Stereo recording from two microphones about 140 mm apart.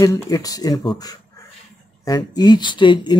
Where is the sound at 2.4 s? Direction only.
30° left (ahead or behind).